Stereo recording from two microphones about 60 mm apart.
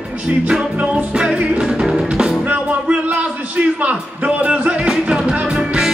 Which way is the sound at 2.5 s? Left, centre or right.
Right.